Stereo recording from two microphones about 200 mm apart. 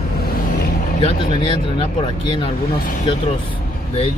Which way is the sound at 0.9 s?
25° left (ahead or behind).